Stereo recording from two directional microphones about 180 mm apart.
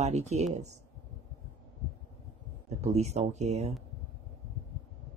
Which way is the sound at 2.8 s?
40° right (ahead or behind).